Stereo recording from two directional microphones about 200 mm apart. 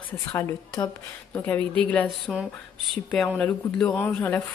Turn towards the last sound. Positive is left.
turn(degrees=10)  # may be behind; listen again after turning